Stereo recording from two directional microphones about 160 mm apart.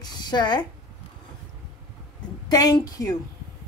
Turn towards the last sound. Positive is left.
turn(degrees=20)  # may be behind; listen again after turning